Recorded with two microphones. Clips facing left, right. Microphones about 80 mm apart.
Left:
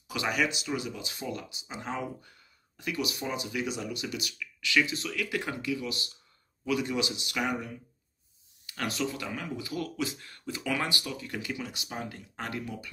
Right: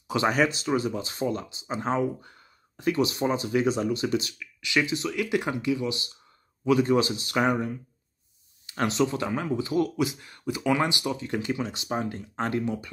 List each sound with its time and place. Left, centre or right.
0.1 s speech: right
8.6 s speech: right